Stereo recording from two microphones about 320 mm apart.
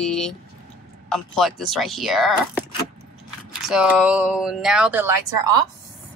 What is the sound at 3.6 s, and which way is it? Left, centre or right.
Speech, centre.